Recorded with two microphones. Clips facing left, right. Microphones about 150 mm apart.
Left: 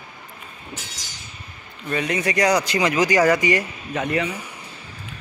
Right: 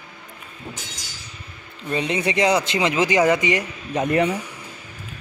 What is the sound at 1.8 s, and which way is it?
Speech, 25° right (ahead or behind).